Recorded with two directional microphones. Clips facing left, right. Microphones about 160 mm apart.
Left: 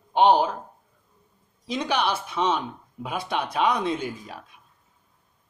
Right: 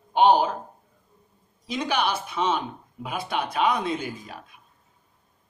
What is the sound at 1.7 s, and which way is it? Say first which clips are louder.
Speech: left 1 dB; 5° right (ahead or behind).